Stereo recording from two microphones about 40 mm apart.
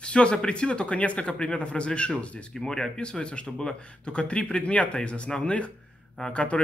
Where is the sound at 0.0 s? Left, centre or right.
Left.